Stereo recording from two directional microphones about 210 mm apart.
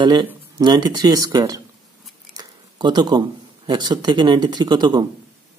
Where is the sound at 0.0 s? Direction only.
20° right (ahead or behind).